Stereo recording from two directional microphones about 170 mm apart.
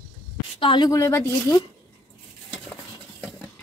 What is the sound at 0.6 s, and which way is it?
A woman's voice, 25° left (ahead or behind).